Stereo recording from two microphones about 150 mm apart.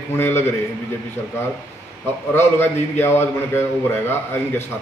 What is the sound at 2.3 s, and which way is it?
A man's voice, 15° left (ahead or behind).